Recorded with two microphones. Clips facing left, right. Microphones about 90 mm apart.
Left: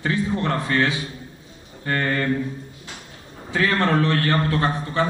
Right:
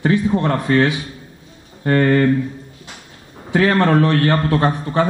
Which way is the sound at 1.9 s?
35° right (ahead or behind).